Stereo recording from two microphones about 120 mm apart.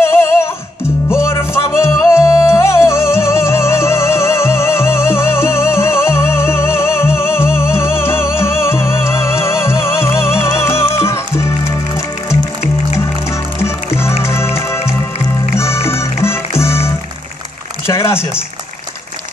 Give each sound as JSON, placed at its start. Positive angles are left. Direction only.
{"t": 0.0, "sound": "music", "side_deg": 20}
{"t": 13.6, "sound": "music", "side_deg": 20}
{"t": 17.8, "sound": "a sound", "side_deg": 20}